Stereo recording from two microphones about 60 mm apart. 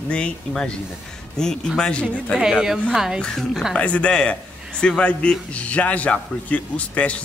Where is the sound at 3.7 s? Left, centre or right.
Left.